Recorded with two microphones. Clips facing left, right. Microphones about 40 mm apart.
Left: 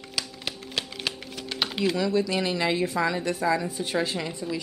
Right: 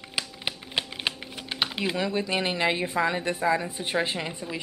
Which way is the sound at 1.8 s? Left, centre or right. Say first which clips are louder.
Left 5 dB; right.